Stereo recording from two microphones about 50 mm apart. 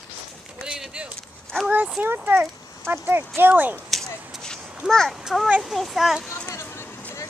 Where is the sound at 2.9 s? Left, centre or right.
Right.